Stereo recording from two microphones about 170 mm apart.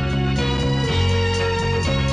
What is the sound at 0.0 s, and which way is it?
Music, centre (ahead or behind).